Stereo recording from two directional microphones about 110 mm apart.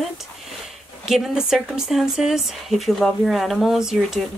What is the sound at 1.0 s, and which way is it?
A woman's voice, 5° right (ahead or behind).